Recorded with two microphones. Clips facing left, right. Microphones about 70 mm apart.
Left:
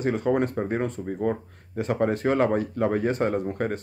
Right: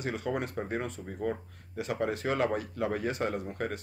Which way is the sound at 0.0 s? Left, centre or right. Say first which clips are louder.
Left 9 dB; left.